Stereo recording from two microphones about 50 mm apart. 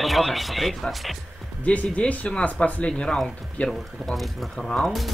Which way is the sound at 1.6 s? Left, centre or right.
Left.